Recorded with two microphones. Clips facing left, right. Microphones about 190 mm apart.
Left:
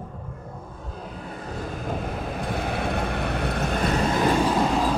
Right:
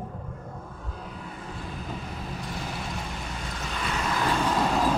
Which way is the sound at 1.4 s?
45° left (ahead or behind).